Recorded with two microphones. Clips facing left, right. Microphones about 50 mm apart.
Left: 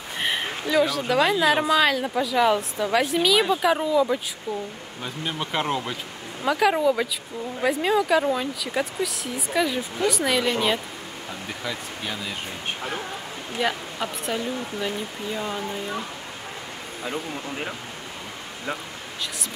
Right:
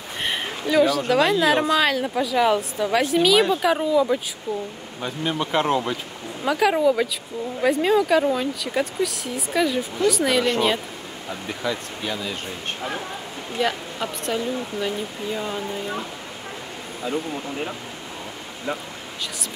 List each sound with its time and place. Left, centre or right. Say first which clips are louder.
0.2 s a woman's voice: even; centre
13.6 s a woman's voice: right 2 dB; centre
17.0 s speech: right 4 dB; centre